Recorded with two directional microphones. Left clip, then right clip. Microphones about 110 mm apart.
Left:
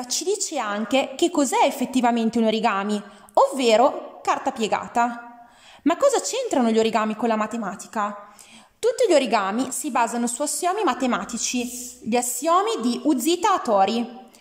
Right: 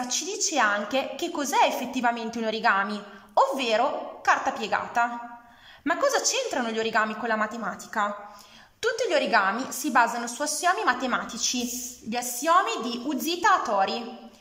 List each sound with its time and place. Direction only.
0.1 s a woman's voice: 55° left (ahead or behind)
0.6 s a woman's voice: 30° left (ahead or behind)
3.3 s a woman's voice: 40° left (ahead or behind)
5.9 s a woman's voice: 40° left (ahead or behind); by 8.1 s 20° left (ahead or behind)
8.8 s a woman's voice: 40° left (ahead or behind)
9.3 s a woman's voice: 30° left (ahead or behind)
12.1 s a woman's voice: 45° left (ahead or behind)